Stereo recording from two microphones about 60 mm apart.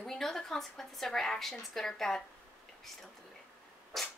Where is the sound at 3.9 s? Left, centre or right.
Centre.